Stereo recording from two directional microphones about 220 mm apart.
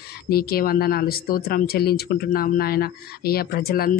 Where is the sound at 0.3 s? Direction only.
45° left (ahead or behind).